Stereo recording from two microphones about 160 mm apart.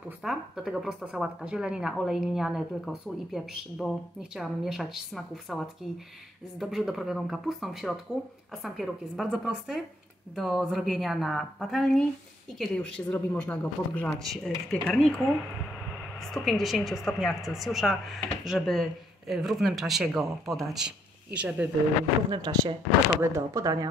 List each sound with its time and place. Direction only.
0.2 s speech: centre (ahead or behind)
6.6 s a woman's voice: centre (ahead or behind)
16.2 s speech: centre (ahead or behind)
22.3 s speech: 25° right (ahead or behind)